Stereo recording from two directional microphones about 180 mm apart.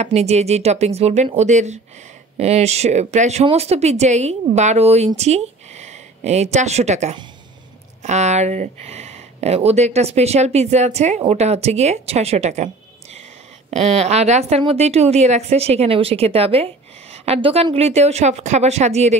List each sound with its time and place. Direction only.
0.0 s speech: 35° right (ahead or behind)
13.7 s speech: 40° right (ahead or behind)